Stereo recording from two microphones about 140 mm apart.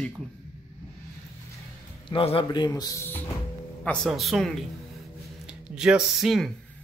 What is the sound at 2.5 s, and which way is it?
Speech, 30° left (ahead or behind).